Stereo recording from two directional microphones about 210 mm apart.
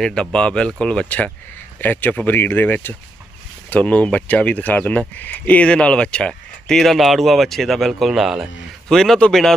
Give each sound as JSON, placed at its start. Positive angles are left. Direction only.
{"t": 0.0, "sound": "speech", "side_deg": 5}